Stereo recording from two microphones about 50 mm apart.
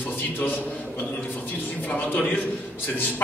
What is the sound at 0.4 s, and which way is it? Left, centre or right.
A man's voice, left.